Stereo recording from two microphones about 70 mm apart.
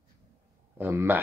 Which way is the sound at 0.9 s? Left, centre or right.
Right.